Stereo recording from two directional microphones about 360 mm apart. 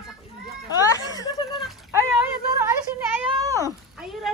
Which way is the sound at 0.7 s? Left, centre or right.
Centre.